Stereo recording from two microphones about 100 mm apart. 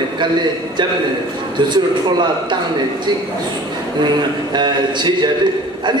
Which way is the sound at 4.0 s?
45° right (ahead or behind).